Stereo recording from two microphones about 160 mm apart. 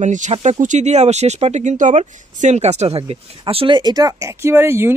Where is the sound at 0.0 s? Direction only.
50° right (ahead or behind).